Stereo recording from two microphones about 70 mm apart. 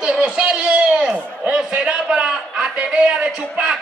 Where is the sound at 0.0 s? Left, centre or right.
Centre.